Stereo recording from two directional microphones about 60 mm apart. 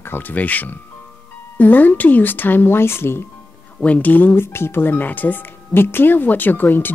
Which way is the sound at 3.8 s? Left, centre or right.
Left.